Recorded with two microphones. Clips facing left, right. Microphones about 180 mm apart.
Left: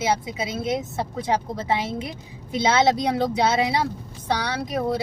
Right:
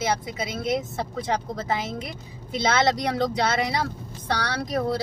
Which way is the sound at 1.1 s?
10° left (ahead or behind).